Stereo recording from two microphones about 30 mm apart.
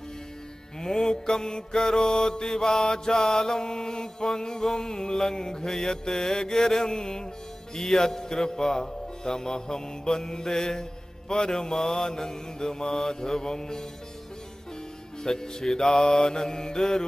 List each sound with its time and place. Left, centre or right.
0.7 s a man's voice: centre
5.7 s mantra: centre
7.7 s a man's voice: centre
15.2 s a man's voice: centre